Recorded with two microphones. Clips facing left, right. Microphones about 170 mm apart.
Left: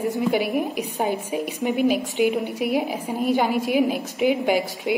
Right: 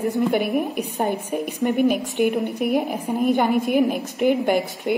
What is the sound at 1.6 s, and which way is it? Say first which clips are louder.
A woman's voice: right 2 dB; 10° left (ahead or behind).